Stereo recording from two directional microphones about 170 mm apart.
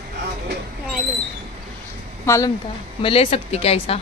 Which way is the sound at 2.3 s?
20° left (ahead or behind).